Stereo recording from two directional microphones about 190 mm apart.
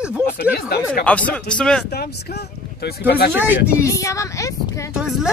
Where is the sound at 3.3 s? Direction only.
10° right (ahead or behind).